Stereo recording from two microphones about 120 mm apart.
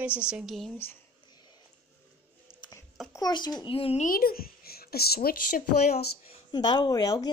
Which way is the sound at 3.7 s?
55° left (ahead or behind).